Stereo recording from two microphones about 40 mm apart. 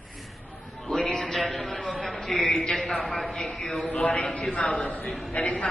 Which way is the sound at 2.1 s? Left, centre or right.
Centre.